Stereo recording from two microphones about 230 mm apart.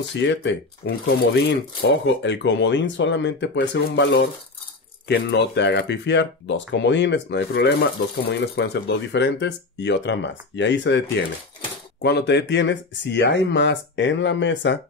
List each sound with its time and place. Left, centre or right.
0.1 s speech: left